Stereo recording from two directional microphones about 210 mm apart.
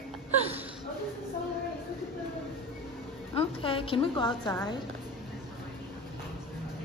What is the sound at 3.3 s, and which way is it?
Music, 25° left (ahead or behind).